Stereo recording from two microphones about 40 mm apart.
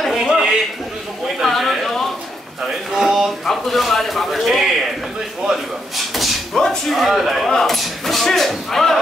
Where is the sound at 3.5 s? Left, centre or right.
Centre.